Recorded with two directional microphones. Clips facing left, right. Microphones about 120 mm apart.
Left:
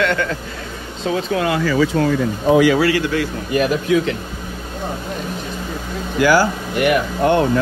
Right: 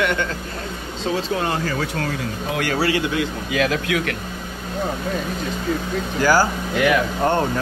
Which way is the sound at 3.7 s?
70° right (ahead or behind).